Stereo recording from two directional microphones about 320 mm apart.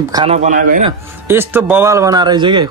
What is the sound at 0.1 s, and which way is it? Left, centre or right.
Speech, centre.